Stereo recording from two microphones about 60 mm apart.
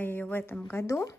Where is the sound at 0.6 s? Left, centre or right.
Left.